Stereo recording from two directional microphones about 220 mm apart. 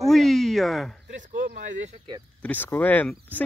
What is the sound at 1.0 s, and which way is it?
Speech, 35° right (ahead or behind).